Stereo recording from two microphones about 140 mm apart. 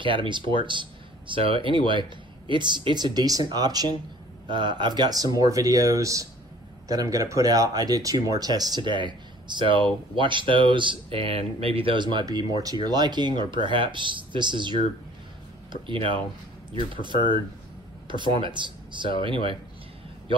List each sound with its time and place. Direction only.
0.0 s speech: 35° right (ahead or behind)